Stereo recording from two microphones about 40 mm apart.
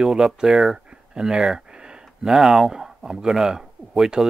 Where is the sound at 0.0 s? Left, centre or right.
Centre.